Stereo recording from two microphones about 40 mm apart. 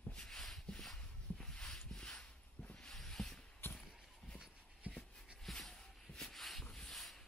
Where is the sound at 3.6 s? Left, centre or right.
Left.